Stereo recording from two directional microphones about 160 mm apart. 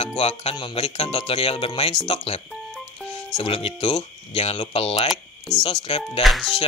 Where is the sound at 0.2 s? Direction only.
40° left (ahead or behind).